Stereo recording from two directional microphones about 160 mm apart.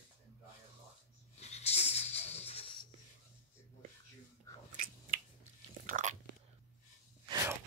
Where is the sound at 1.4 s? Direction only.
40° left (ahead or behind).